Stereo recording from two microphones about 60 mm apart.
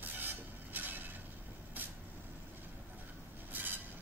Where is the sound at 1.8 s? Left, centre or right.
Right.